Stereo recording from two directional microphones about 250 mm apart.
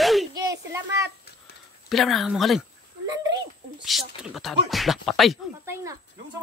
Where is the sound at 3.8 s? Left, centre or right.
Centre.